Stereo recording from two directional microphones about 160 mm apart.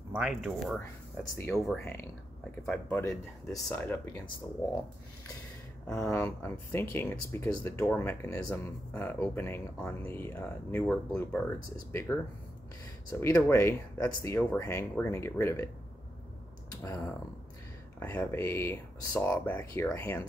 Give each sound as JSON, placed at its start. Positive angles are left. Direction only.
{"t": 0.1, "sound": "speech", "side_deg": -5}
{"t": 0.7, "sound": "speech", "side_deg": 15}
{"t": 5.9, "sound": "speech", "side_deg": 10}
{"t": 16.8, "sound": "speech", "side_deg": 15}